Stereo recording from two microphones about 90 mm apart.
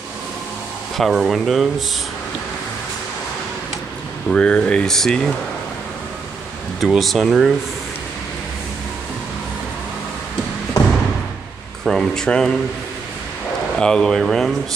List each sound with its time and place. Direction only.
0.9 s speech: centre (ahead or behind)
4.3 s speech: 10° left (ahead or behind)
6.8 s speech: centre (ahead or behind)
11.8 s speech: 5° left (ahead or behind)
13.7 s speech: 5° left (ahead or behind)